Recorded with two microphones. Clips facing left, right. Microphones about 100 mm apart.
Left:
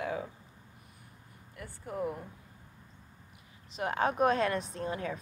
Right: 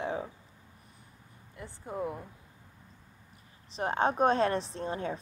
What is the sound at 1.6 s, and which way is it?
Speech, 25° right (ahead or behind).